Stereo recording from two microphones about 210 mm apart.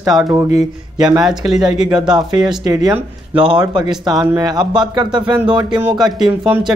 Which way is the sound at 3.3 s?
20° right (ahead or behind).